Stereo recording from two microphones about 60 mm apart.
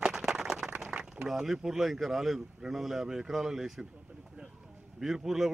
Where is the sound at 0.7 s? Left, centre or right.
Right.